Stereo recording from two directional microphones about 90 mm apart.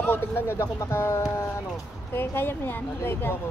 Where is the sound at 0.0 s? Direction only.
25° left (ahead or behind).